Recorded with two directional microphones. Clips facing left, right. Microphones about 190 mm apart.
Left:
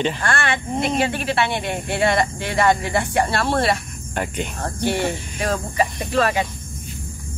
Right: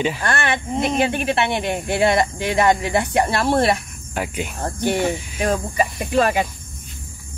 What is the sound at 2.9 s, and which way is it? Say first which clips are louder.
Speech: right 1 dB; 15° right (ahead or behind).